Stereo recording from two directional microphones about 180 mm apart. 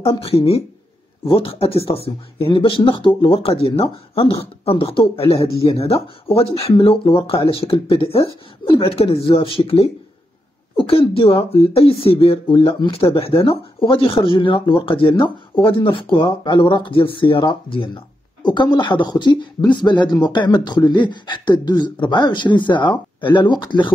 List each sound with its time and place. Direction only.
0.0 s speech: 30° left (ahead or behind)